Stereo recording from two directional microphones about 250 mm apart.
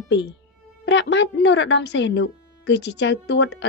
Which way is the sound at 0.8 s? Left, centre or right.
Left.